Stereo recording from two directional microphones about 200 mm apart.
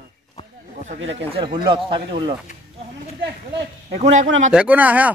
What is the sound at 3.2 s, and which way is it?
Speech, 60° right (ahead or behind).